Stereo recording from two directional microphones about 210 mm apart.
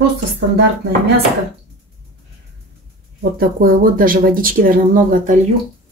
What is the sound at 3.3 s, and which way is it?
Speech, 45° right (ahead or behind).